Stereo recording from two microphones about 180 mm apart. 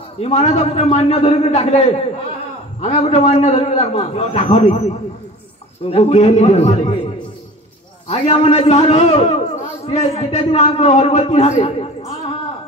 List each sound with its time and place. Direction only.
0.2 s a man's voice: 40° left (ahead or behind)
5.9 s a man's voice: 35° left (ahead or behind)
8.1 s a man's voice: 30° left (ahead or behind)